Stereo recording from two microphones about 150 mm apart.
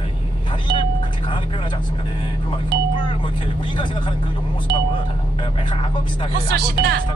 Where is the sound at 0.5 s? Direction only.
35° left (ahead or behind).